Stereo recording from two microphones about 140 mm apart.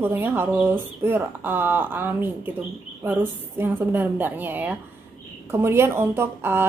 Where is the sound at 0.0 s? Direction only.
15° right (ahead or behind).